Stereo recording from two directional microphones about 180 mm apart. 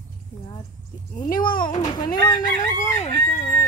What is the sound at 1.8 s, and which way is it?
Chicken, 25° left (ahead or behind).